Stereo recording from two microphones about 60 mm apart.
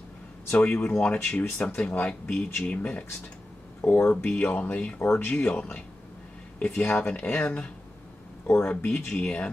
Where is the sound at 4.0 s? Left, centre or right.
Left.